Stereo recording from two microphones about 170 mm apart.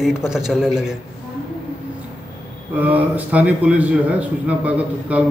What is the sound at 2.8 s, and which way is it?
A man's voice, 10° right (ahead or behind).